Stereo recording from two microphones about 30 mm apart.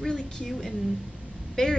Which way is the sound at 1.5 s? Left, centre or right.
Centre.